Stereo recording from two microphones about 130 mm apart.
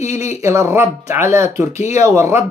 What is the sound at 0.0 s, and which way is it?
Speech, 25° right (ahead or behind).